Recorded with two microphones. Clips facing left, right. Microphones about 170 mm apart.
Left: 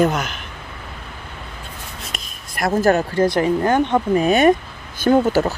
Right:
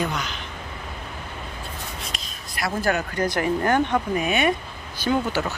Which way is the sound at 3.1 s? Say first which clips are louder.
Left 6 dB; 25° left (ahead or behind).